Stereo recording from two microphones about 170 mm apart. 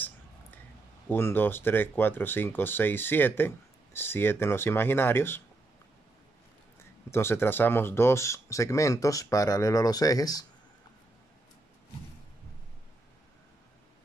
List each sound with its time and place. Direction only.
1.0 s speech: 15° left (ahead or behind)
6.8 s speech: 15° left (ahead or behind)